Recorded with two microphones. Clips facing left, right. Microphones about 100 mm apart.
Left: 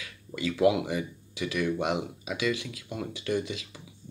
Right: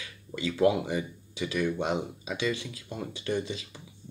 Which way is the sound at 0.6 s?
5° left (ahead or behind).